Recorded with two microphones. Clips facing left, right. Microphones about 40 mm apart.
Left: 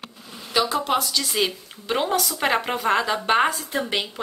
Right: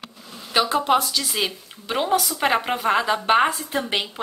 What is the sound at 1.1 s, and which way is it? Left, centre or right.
A woman's voice, centre.